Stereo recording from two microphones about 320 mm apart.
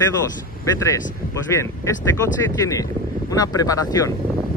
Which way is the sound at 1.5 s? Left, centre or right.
Centre.